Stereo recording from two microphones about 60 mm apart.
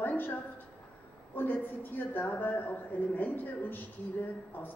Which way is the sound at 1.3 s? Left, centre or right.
Left.